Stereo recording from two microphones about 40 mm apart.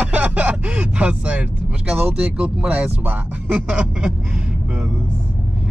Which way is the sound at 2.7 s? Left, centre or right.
Right.